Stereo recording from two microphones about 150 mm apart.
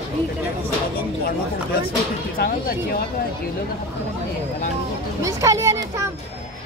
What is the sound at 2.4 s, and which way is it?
Speech, 90° left.